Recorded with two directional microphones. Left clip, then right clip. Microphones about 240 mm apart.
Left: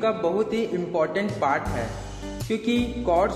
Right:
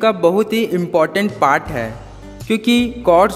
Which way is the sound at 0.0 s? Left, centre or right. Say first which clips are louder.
Right 9 dB; right.